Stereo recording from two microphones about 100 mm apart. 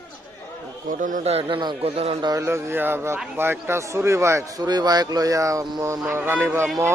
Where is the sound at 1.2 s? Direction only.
90° right.